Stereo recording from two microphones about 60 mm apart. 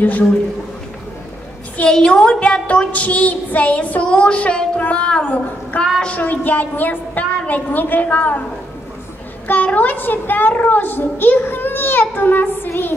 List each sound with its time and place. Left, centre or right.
0.0 s a woman's voice: left
1.9 s a woman's voice: centre
5.7 s a woman's voice: left
9.5 s a child's voice: left